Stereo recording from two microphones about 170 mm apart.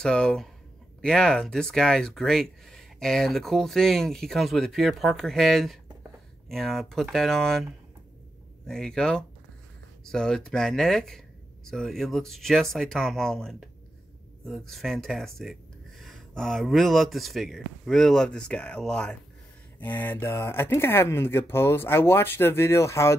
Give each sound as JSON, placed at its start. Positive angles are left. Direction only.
{"t": 0.0, "sound": "speech", "side_deg": 5}
{"t": 8.6, "sound": "speech", "side_deg": 5}